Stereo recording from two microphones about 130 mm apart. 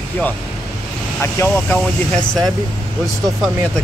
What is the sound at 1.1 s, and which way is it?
Speech, 20° left (ahead or behind).